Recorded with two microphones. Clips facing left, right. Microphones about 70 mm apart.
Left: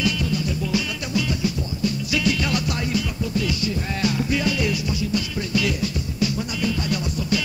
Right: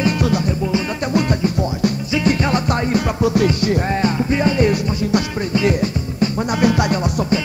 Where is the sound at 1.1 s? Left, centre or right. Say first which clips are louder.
Right 6 dB; right.